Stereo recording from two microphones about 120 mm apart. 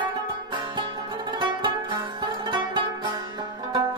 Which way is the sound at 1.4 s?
40° right (ahead or behind).